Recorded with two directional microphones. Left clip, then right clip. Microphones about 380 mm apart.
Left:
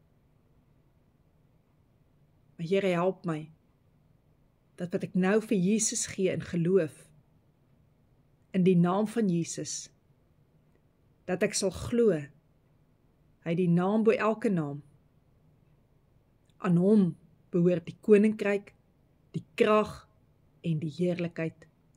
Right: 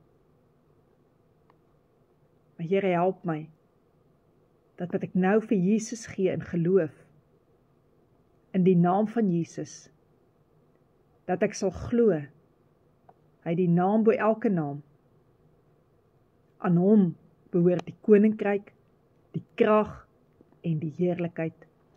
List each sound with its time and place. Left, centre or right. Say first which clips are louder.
2.5 s speech: right 2 dB; centre
4.7 s speech: right 2 dB; centre
8.5 s speech: right 3 dB; centre
11.2 s speech: right 2 dB; centre
13.4 s speech: right 3 dB; centre
16.5 s speech: right 2 dB; centre